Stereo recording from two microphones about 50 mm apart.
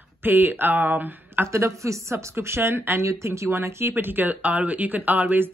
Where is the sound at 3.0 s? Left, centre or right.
Right.